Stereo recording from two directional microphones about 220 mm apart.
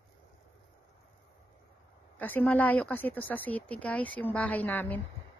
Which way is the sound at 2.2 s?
10° left (ahead or behind).